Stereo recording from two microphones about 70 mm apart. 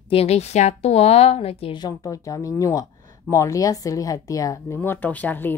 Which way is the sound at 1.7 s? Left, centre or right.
Left.